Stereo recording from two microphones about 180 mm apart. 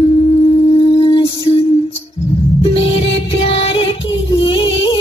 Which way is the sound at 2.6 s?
30° left (ahead or behind).